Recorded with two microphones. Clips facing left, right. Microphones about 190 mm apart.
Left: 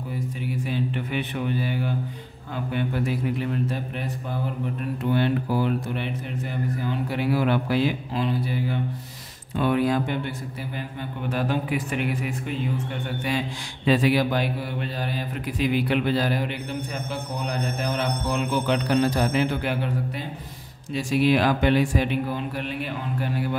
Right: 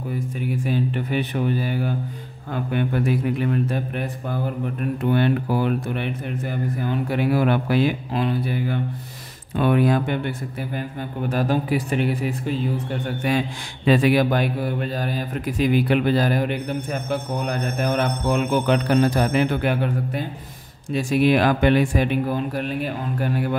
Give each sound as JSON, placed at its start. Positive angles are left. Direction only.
{"t": 0.7, "sound": "speech", "side_deg": -45}
{"t": 2.5, "sound": "speech", "side_deg": -55}
{"t": 5.1, "sound": "speech", "side_deg": -60}
{"t": 11.2, "sound": "a man's voice", "side_deg": -40}